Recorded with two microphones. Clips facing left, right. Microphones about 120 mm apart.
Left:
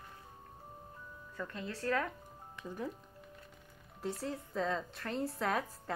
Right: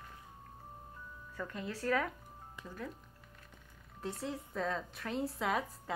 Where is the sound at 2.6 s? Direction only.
15° left (ahead or behind).